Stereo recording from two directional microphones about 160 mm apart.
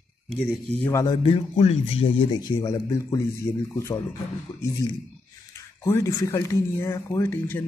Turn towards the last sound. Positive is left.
turn(degrees=15)  # may be behind; listen again after turning